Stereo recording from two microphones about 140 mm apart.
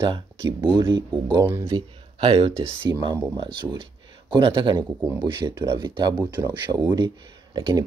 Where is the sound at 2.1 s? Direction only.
40° right (ahead or behind).